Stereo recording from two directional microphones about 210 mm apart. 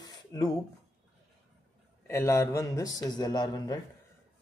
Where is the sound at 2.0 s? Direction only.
10° left (ahead or behind).